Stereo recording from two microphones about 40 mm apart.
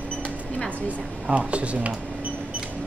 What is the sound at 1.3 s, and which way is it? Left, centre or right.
Speech, right.